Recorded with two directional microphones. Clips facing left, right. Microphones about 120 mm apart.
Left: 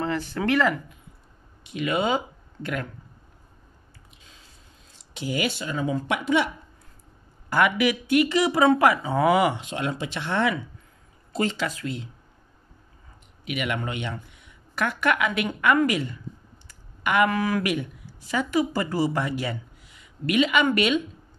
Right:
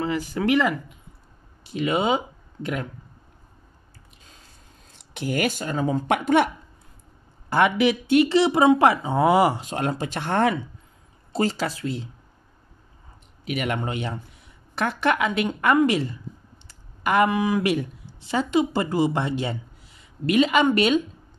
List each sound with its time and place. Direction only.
0.0 s a sound: 10° right (ahead or behind)
0.5 s speech: 15° right (ahead or behind)
1.6 s speech: 35° right (ahead or behind)
4.2 s a sound: 45° right (ahead or behind)
4.9 s speech: 55° right (ahead or behind)
7.4 s speech: 30° right (ahead or behind)
13.5 s speech: 35° right (ahead or behind)
16.6 s clicking: 35° right (ahead or behind)
17.3 s speech: 15° right (ahead or behind)
17.6 s speech: 25° right (ahead or behind)